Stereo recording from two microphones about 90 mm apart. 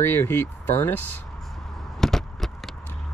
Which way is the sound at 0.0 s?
25° left (ahead or behind).